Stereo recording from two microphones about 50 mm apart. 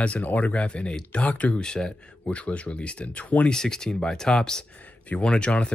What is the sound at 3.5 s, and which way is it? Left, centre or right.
Speech, centre.